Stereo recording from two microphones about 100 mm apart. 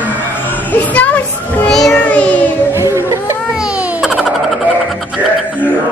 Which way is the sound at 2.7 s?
30° right (ahead or behind).